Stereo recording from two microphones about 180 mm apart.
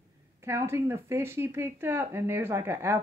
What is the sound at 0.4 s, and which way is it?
A woman's voice, 15° right (ahead or behind).